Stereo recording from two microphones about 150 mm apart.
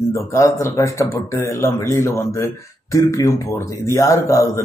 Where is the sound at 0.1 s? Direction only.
20° left (ahead or behind).